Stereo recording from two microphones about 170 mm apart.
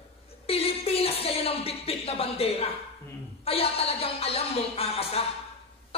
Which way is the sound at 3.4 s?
35° left (ahead or behind).